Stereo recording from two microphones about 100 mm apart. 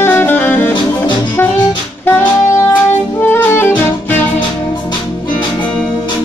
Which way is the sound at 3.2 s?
20° left (ahead or behind).